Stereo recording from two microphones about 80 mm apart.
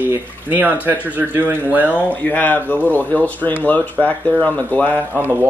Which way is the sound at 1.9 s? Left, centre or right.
Left.